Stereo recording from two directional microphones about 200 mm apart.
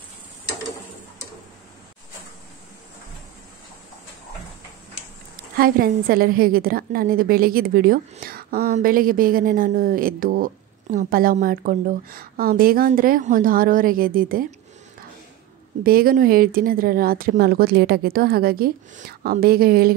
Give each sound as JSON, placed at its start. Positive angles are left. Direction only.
{"t": 5.6, "sound": "a woman's voice", "side_deg": -45}
{"t": 15.8, "sound": "a woman's voice", "side_deg": -45}